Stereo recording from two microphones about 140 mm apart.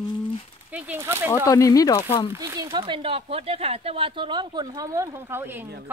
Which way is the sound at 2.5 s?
30° right (ahead or behind).